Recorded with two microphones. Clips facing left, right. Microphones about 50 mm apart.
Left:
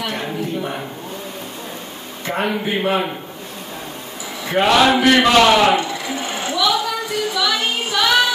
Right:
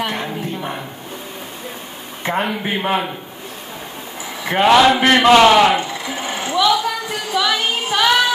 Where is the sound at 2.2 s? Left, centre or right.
Right.